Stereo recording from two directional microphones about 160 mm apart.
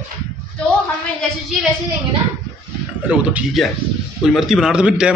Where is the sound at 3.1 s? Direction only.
10° right (ahead or behind).